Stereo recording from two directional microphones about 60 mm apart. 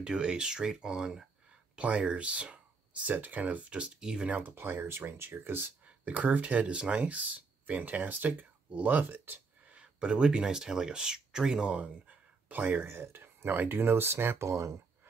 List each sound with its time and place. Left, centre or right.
0.0 s speech: centre
4.3 s speech: right
5.9 s speech: right
9.7 s speech: centre
12.4 s speech: right
14.5 s speech: right